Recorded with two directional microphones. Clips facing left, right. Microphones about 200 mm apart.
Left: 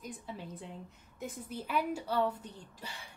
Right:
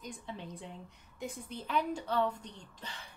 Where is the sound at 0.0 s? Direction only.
5° left (ahead or behind).